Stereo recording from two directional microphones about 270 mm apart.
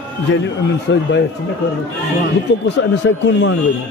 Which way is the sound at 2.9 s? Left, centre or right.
Left.